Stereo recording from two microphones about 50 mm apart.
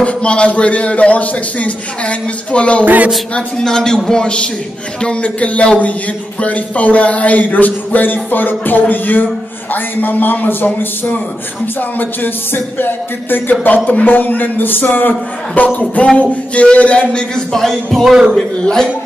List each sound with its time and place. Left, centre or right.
0.0 s a man's voice: left
2.8 s speech: right
3.3 s a man's voice: centre
17.5 s a man's voice: centre